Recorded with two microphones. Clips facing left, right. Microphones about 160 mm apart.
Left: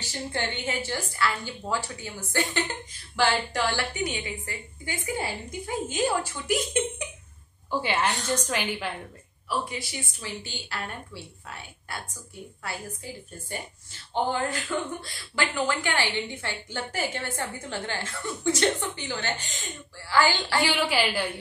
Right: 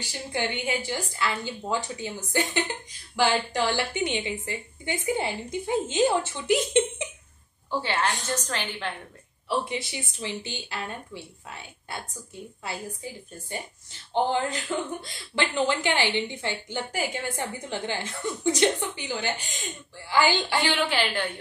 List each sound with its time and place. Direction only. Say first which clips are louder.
0.0 s a woman's voice: right 1 dB; 15° right (ahead or behind)
7.8 s a woman's voice: left 1 dB; 10° left (ahead or behind)
9.5 s a woman's voice: right 3 dB; 20° right (ahead or behind)
14.4 s a woman's voice: even; 20° right (ahead or behind)
20.7 s a woman's voice: even; 10° left (ahead or behind)